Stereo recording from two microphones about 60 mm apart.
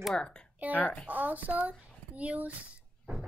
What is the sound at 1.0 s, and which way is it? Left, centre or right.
A child's voice, right.